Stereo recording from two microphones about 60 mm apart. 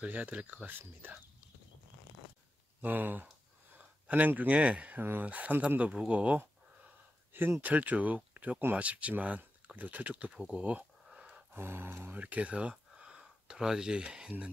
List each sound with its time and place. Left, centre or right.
0.0 s speech: right
2.8 s speech: right
10.4 s a sound: right
11.5 s speech: right
12.1 s speech: right